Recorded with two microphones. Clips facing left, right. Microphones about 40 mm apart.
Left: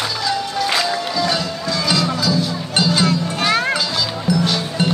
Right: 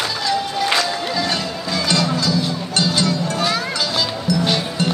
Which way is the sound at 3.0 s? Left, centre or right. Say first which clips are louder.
Left 1 dB; left.